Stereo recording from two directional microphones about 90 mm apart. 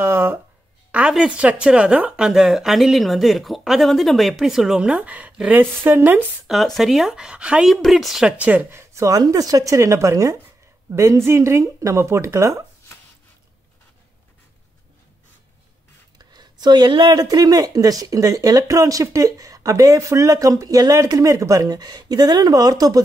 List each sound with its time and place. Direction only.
0.0 s speech: 25° right (ahead or behind)
0.9 s speech: 10° right (ahead or behind)
6.4 s speech: centre (ahead or behind)
7.7 s speech: centre (ahead or behind)
8.3 s speech: 15° right (ahead or behind); by 12.6 s 35° right (ahead or behind)
16.2 s a sound: 50° right (ahead or behind)
17.2 s speech: 45° right (ahead or behind)